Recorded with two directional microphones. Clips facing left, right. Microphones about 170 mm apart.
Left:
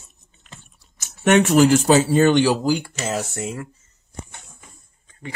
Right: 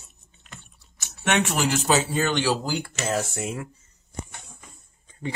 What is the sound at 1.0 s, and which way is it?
Speech, 45° left (ahead or behind).